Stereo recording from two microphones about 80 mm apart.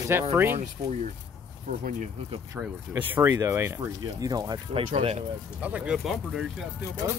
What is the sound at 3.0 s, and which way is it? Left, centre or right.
Speech, right.